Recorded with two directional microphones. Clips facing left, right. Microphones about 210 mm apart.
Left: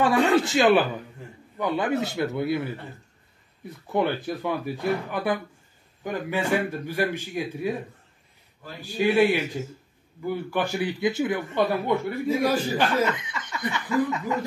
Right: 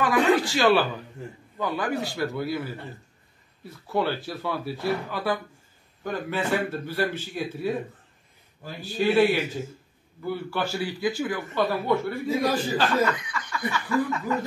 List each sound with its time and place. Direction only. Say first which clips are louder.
0.0 s a man's voice: left 1 dB; 25° left (ahead or behind)
8.9 s a man's voice: even; 15° left (ahead or behind)